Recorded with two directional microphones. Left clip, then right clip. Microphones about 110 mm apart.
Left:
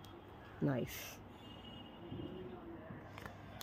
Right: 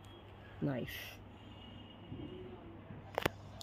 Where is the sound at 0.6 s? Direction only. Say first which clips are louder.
Even; 10° left (ahead or behind).